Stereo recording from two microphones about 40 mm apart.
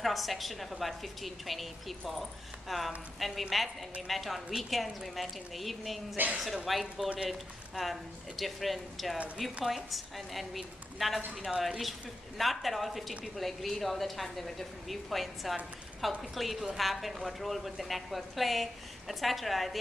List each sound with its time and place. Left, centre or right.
0.0 s a woman's voice: centre
6.1 s a woman's voice: right
6.4 s a woman's voice: centre
12.4 s a woman's voice: centre